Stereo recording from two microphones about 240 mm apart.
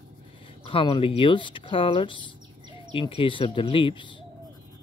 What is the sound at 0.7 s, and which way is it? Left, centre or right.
Speech, left.